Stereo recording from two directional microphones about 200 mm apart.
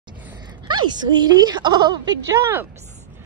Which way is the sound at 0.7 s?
20° right (ahead or behind).